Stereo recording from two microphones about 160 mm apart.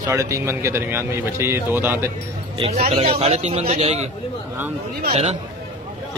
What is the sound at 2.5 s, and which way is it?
Speech, 40° right (ahead or behind).